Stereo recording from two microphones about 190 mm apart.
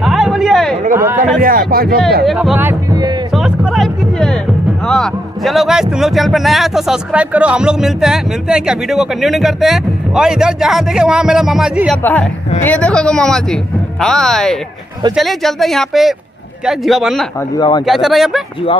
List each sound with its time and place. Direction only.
0.0 s a sound: centre (ahead or behind)
0.9 s speech: 10° right (ahead or behind)
1.4 s speech: 50° right (ahead or behind)
2.2 s a man's voice: 5° right (ahead or behind)
2.9 s speech: 20° right (ahead or behind)
3.3 s music: 5° right (ahead or behind)
4.8 s a man's voice: 5° left (ahead or behind)
12.0 s a woman's voice: 10° left (ahead or behind)
17.6 s speech: 20° left (ahead or behind)
17.8 s a man's voice: centre (ahead or behind)